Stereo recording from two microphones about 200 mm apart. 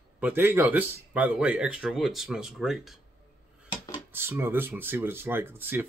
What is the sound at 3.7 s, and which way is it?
Dishes, 20° left (ahead or behind).